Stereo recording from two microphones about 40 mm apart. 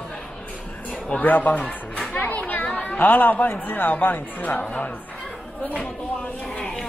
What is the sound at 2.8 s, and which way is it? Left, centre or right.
Speech, left.